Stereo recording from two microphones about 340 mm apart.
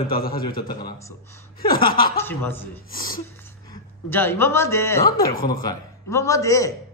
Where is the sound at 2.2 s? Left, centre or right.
Centre.